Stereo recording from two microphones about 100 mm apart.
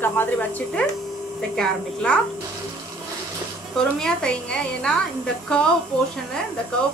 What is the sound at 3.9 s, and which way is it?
A woman's voice, 10° left (ahead or behind).